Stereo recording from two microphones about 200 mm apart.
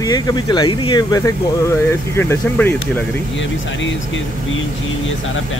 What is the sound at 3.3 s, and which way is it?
Speech, 70° left (ahead or behind).